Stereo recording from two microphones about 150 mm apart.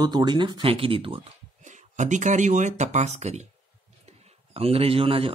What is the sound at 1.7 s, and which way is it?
A man's voice, 55° right (ahead or behind).